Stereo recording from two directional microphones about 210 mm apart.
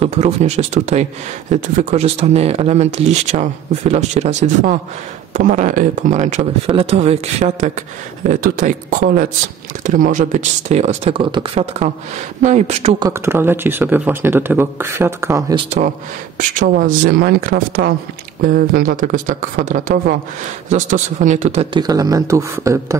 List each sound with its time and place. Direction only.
0.0 s speech: 30° right (ahead or behind)
13.0 s speech: 10° right (ahead or behind)
15.5 s speech: 30° right (ahead or behind)
21.7 s speech: 20° right (ahead or behind)